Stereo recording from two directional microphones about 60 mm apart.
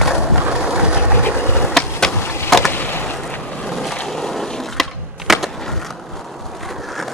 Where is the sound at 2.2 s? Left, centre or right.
Left.